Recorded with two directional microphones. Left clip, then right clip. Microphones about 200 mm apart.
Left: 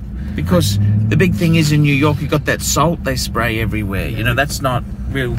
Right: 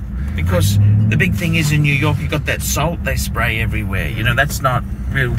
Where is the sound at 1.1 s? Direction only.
25° left (ahead or behind).